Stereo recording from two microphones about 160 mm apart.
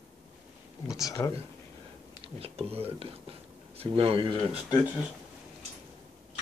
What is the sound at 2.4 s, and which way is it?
Speech, 40° right (ahead or behind).